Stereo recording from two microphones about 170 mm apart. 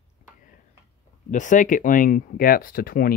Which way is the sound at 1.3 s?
50° left (ahead or behind).